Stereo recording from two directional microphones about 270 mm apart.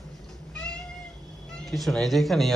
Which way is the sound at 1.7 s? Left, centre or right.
Centre.